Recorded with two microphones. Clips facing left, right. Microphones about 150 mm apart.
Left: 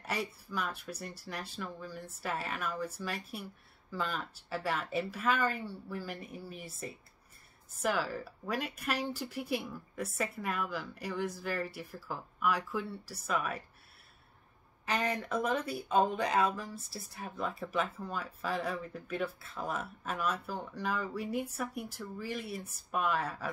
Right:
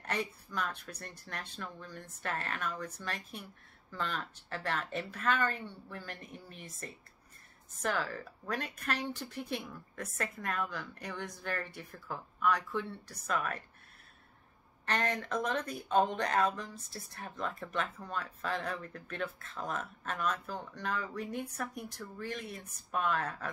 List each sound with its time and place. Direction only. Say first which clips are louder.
0.0 s speech: even; 5° left (ahead or behind)
7.8 s speech: left 2 dB; 5° left (ahead or behind)
14.9 s speech: left 1 dB; 5° left (ahead or behind)